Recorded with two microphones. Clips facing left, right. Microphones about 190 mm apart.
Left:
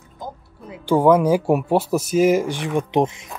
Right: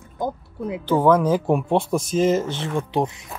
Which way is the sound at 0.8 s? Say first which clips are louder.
Left 2 dB; 10° left (ahead or behind).